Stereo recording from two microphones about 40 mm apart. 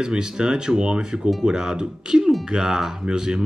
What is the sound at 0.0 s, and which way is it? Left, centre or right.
Speech, centre.